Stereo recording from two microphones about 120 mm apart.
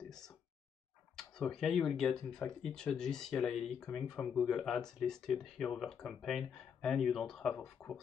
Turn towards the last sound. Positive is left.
turn(degrees=5)  # may be behind; listen again after turning